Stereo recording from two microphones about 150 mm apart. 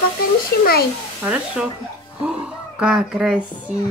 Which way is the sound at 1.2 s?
10° right (ahead or behind).